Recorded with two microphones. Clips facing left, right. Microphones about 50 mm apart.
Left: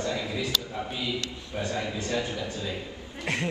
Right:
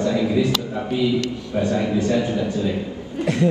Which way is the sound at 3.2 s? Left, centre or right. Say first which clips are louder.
Right 10 dB; left.